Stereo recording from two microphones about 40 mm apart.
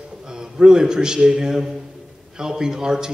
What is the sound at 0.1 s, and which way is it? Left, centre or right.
A man's voice, centre.